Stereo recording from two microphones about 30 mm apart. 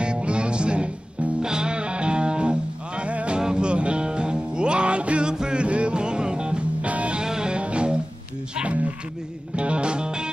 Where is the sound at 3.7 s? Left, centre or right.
Right.